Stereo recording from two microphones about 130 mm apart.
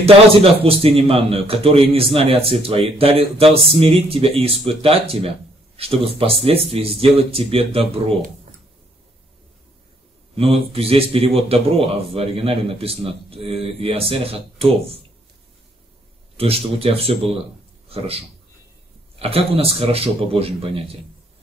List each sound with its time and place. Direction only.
0.0 s a man's voice: 45° right (ahead or behind)
10.3 s a man's voice: 50° right (ahead or behind)
16.3 s a man's voice: 50° right (ahead or behind)